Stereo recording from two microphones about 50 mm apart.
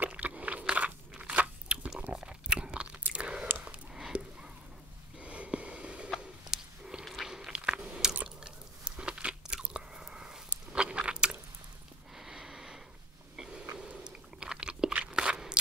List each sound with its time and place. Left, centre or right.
0.0 s crunch: right
1.3 s biting: right
3.1 s chewing: centre
3.5 s a sound: right
6.1 s a sound: centre
7.2 s chewing: centre
8.4 s biting: centre
12.2 s sniff: centre
14.0 s biting: centre